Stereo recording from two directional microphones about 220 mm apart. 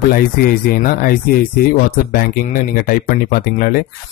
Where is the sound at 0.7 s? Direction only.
40° left (ahead or behind).